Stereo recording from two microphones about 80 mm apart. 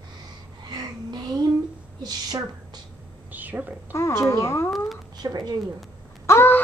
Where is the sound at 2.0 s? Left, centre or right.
Right.